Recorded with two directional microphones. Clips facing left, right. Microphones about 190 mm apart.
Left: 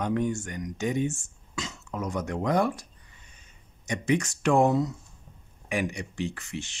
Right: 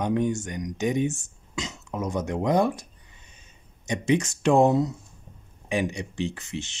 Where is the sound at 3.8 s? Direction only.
25° right (ahead or behind).